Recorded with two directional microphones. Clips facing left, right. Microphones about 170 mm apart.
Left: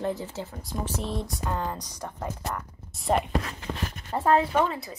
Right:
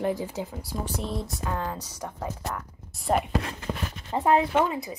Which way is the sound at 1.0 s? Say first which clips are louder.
Even; centre (ahead or behind).